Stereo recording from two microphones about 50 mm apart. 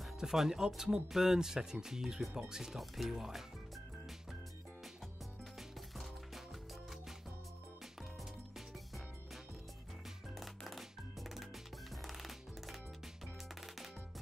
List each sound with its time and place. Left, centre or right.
0.2 s speech: centre
2.5 s music: centre